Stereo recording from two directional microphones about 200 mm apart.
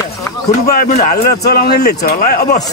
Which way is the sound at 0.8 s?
45° left (ahead or behind).